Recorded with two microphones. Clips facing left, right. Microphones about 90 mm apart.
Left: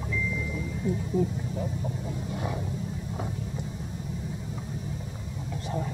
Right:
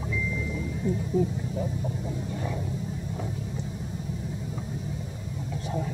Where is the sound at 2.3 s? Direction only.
10° left (ahead or behind).